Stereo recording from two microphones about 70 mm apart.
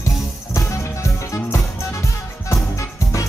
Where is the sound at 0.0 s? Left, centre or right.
Left.